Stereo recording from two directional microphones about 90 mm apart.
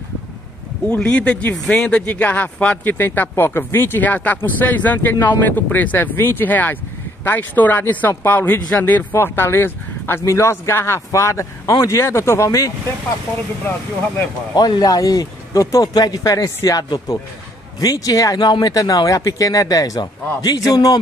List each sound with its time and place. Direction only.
0.8 s speech: 10° left (ahead or behind); by 12.7 s 40° left (ahead or behind)
14.5 s speech: 50° left (ahead or behind)